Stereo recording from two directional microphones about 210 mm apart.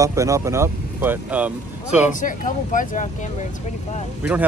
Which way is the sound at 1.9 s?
40° left (ahead or behind).